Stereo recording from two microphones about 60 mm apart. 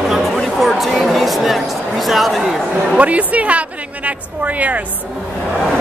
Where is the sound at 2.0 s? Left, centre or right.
Centre.